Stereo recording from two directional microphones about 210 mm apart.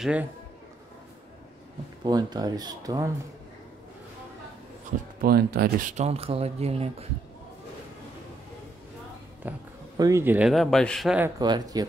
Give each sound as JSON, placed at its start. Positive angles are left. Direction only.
{"t": 0.0, "sound": "a man's voice", "side_deg": -5}
{"t": 2.0, "sound": "speech", "side_deg": -20}
{"t": 5.2, "sound": "speech", "side_deg": -45}
{"t": 9.4, "sound": "speech", "side_deg": -10}
{"t": 11.3, "sound": "speech", "side_deg": -20}